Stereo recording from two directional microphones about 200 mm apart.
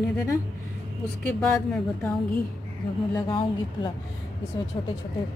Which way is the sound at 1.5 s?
5° left (ahead or behind).